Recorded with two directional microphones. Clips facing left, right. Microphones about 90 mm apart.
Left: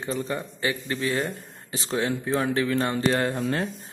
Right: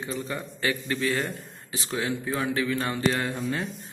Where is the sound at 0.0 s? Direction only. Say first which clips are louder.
Left 3 dB; 35° left (ahead or behind).